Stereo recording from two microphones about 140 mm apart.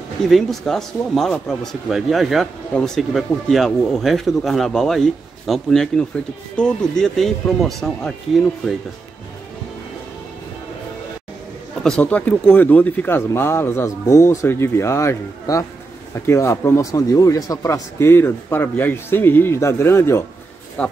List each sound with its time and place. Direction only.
0.3 s speech: centre (ahead or behind)
11.8 s speech: 5° left (ahead or behind)